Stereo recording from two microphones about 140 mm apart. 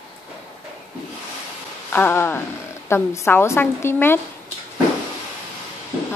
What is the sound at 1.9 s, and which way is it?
Speech, 15° left (ahead or behind).